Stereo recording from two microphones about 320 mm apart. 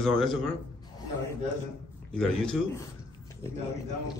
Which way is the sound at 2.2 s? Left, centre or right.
Centre.